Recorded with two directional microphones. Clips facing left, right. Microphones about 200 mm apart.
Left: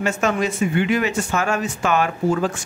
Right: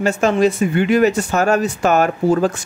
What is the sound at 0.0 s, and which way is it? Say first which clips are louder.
Speech: right 6 dB; 35° right (ahead or behind).